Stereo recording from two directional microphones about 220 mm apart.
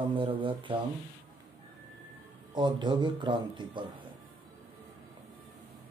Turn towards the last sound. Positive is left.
turn(degrees=-20)  # may be behind; listen again after turning